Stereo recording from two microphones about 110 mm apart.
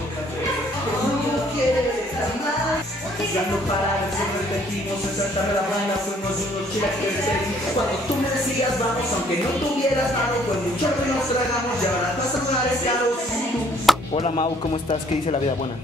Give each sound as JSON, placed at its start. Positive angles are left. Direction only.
{"t": 13.9, "sound": "music", "side_deg": 0}